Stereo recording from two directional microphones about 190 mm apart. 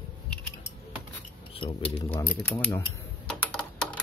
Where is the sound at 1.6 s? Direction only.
30° left (ahead or behind).